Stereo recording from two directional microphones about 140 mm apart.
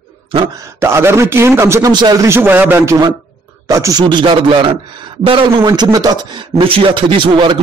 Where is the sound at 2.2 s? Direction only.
15° right (ahead or behind).